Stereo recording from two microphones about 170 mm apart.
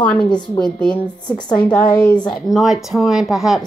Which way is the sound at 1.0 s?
25° left (ahead or behind).